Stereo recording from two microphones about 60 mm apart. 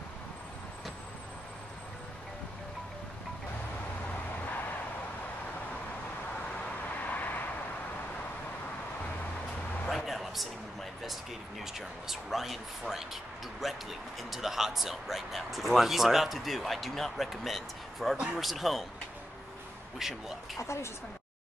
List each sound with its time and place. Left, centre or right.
6.6 s vehicle: left
9.8 s a sound: centre
11.6 s speech: centre
20.0 s speech: centre
20.5 s a woman's voice: left